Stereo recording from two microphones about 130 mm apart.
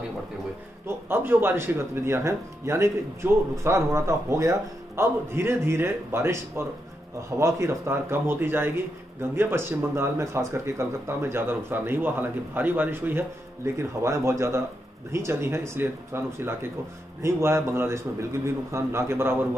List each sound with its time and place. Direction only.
0.8 s speech: 15° right (ahead or behind)